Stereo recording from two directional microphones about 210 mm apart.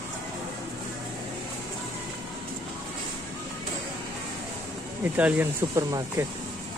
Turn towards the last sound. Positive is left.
turn(degrees=-15)  # may be behind; listen again after turning